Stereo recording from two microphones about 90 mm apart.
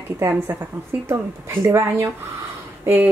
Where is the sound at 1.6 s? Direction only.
30° right (ahead or behind).